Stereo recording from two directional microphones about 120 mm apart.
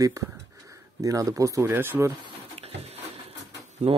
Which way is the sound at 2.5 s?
60° right (ahead or behind).